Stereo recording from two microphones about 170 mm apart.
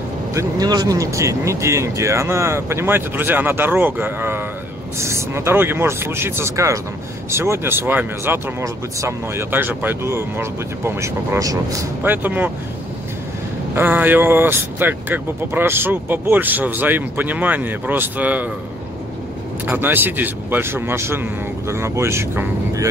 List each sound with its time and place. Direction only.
0.3 s speech: 20° right (ahead or behind)
13.7 s speech: 10° right (ahead or behind)
19.6 s speech: 10° right (ahead or behind)